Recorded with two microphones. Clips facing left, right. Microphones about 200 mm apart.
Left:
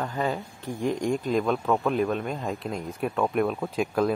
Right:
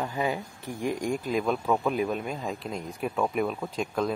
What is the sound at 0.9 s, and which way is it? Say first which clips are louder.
Speech: left 3 dB; centre (ahead or behind).